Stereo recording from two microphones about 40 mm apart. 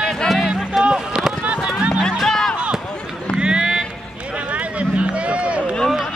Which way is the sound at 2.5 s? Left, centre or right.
Right.